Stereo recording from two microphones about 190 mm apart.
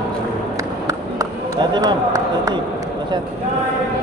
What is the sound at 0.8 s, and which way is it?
Run, 20° right (ahead or behind).